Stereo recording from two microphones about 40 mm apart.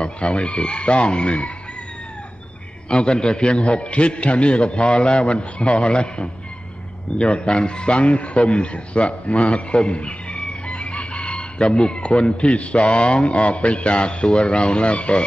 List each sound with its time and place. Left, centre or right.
0.0 s a man's voice: left
2.9 s a man's voice: left